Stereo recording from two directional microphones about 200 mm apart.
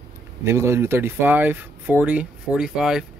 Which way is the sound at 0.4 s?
15° right (ahead or behind).